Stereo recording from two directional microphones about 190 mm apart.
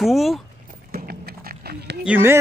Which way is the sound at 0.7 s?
50° right (ahead or behind).